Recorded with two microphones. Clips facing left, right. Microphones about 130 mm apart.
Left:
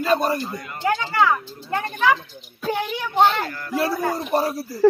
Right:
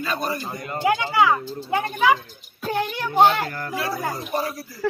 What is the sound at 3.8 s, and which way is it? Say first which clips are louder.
Speech: left 6 dB; 50° left (ahead or behind).